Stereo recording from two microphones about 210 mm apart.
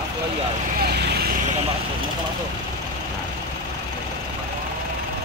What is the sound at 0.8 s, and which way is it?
Speech, 50° right (ahead or behind).